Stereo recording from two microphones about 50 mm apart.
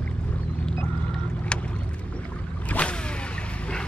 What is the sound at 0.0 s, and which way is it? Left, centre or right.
Boat, left.